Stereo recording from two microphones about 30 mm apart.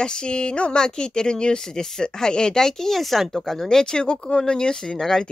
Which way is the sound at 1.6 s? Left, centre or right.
Centre.